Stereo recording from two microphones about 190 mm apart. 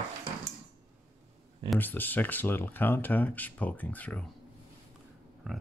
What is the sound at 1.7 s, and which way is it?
Speech, 10° left (ahead or behind).